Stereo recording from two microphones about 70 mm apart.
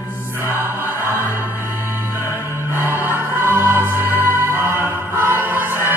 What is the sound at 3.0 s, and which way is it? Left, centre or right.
Music, right.